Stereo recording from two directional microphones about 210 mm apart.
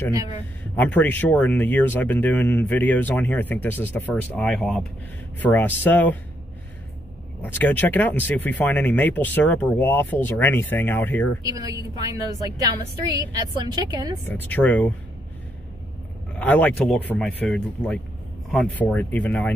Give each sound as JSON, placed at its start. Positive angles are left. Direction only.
{"t": 0.7, "sound": "speech", "side_deg": 10}
{"t": 7.5, "sound": "speech", "side_deg": 10}
{"t": 11.4, "sound": "a woman's voice", "side_deg": -15}
{"t": 13.0, "sound": "a woman's voice", "side_deg": -20}
{"t": 14.2, "sound": "speech", "side_deg": 10}
{"t": 16.3, "sound": "speech", "side_deg": 10}